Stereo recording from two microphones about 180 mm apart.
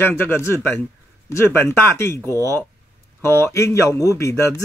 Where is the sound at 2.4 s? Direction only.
20° right (ahead or behind).